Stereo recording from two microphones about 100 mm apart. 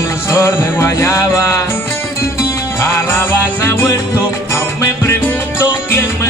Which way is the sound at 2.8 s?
25° left (ahead or behind).